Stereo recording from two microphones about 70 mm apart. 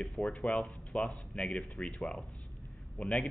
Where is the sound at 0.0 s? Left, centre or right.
Centre.